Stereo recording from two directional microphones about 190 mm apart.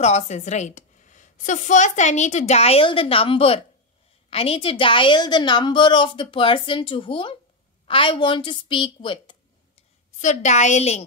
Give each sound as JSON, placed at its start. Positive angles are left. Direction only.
{"t": 0.0, "sound": "a woman's voice", "side_deg": 35}
{"t": 10.1, "sound": "a woman's voice", "side_deg": 40}